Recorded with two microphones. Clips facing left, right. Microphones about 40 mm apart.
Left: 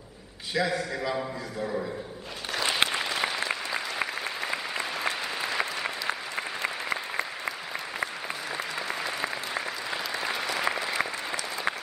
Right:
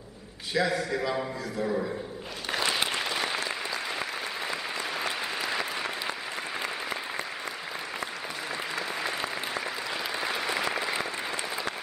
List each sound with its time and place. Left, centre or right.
0.6 s a man's voice: centre
3.4 s applause: centre
4.9 s applause: centre
9.0 s applause: centre